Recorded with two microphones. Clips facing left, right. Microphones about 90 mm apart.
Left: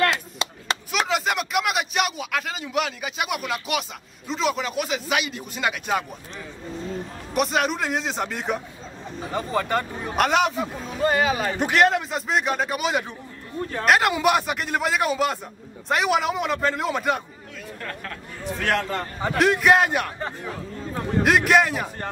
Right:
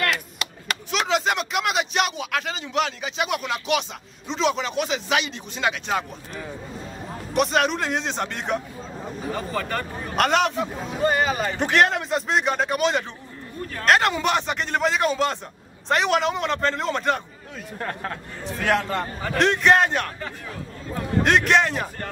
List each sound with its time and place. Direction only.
0.0 s chop: 25° left (ahead or behind)
0.9 s a sound: 5° left (ahead or behind)
4.3 s a man's voice: 5° left (ahead or behind)
7.3 s a man's voice: centre (ahead or behind)
9.3 s speech: 20° left (ahead or behind)
10.1 s a man's voice: 5° left (ahead or behind)
13.6 s a sound: 25° left (ahead or behind)
13.8 s a man's voice: 5° left (ahead or behind)
17.7 s speech: 30° right (ahead or behind)
18.6 s a man's voice: 5° right (ahead or behind)
20.2 s speech: 30° left (ahead or behind)
21.2 s a man's voice: 5° left (ahead or behind)